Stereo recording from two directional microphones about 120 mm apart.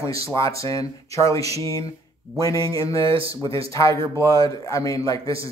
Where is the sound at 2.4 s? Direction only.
30° left (ahead or behind).